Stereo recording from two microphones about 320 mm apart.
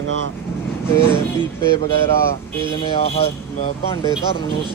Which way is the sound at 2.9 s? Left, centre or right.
Centre.